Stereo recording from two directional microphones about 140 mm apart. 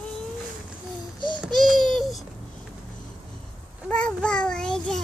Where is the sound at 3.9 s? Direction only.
10° left (ahead or behind).